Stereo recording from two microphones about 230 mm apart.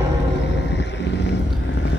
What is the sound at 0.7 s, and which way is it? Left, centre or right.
Vehicle, left.